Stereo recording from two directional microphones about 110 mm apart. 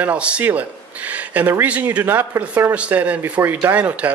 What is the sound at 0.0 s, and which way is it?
A man's voice, 10° right (ahead or behind).